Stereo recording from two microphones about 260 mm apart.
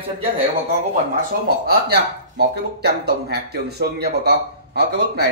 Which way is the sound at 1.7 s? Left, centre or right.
Right.